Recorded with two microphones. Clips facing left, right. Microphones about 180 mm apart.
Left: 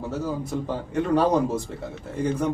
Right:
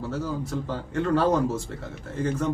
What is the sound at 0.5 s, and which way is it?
Speech, 15° left (ahead or behind).